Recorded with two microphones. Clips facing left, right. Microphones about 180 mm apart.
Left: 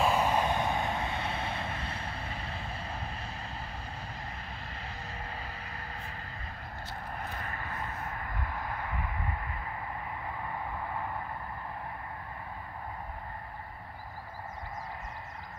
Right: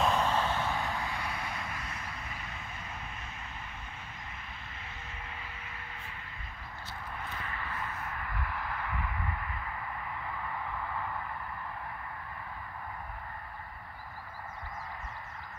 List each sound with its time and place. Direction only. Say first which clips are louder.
0.0 s vehicle: left 2 dB; 10° left (ahead or behind); by 3.3 s 35° left (ahead or behind)
4.8 s vehicle: left 5 dB; 35° left (ahead or behind)
10.4 s a sound: left 1 dB; 25° left (ahead or behind)